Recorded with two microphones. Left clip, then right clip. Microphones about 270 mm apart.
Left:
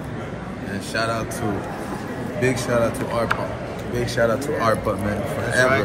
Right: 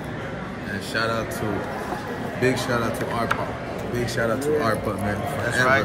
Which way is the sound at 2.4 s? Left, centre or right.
Centre.